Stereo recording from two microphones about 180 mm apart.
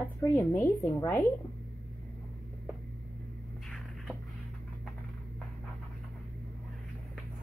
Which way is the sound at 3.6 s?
Centre (ahead or behind).